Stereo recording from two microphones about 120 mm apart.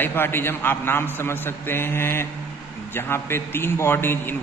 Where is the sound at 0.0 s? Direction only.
20° left (ahead or behind).